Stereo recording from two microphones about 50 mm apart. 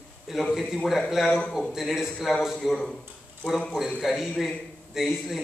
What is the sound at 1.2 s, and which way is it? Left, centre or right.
Speech, left.